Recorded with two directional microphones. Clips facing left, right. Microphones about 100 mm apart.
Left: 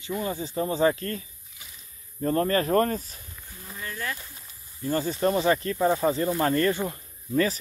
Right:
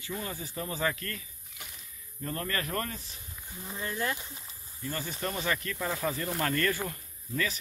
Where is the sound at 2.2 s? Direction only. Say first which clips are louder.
Left 11 dB; 35° left (ahead or behind).